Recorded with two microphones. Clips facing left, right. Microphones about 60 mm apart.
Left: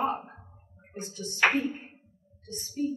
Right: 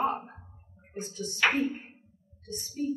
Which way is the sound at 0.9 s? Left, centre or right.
Left.